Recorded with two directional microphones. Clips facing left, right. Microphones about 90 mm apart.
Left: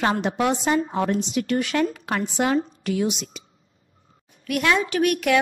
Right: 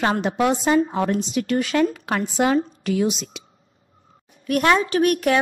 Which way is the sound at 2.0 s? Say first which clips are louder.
Right 2 dB; 85° right.